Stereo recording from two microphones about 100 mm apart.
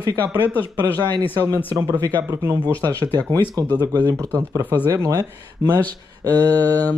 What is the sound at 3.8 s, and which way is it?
Speech, 40° right (ahead or behind).